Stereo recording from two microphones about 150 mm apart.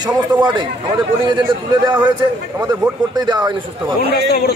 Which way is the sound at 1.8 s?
30° right (ahead or behind).